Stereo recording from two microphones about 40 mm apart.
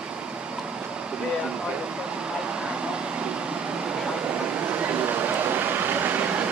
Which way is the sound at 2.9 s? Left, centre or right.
Right.